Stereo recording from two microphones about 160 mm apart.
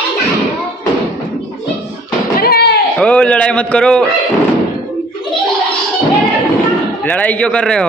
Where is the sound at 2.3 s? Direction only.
75° left (ahead or behind).